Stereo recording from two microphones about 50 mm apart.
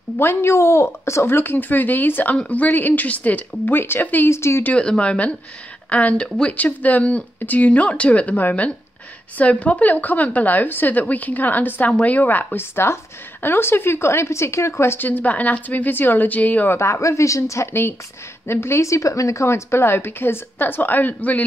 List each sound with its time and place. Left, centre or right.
0.2 s speech: left
1.3 s a woman's voice: left
4.3 s speech: left
4.7 s speech: left
6.2 s speech: centre
6.5 s a woman's voice: left
12.5 s speech: left
15.0 s a woman's voice: left
16.8 s a woman's voice: left
18.5 s a woman's voice: left